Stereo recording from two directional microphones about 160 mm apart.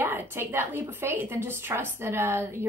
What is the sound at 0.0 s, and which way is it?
A woman's voice, 15° right (ahead or behind).